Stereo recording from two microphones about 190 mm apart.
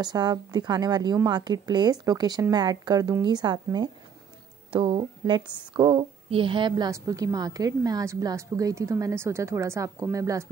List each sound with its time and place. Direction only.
0.0 s a woman's voice: 20° right (ahead or behind)